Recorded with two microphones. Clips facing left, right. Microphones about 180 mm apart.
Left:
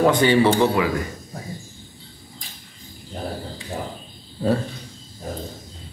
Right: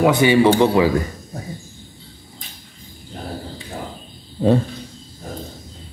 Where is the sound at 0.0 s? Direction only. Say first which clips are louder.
Right 2 dB; 10° right (ahead or behind).